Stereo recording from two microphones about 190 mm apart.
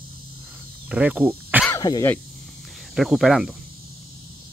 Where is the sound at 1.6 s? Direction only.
15° left (ahead or behind).